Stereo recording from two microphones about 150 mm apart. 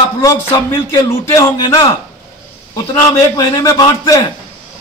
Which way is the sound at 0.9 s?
15° left (ahead or behind).